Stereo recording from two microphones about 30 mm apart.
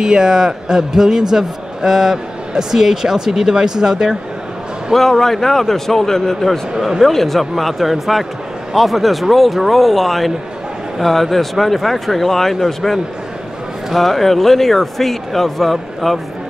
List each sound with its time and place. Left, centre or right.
0.0 s a man's voice: right
4.9 s speech: centre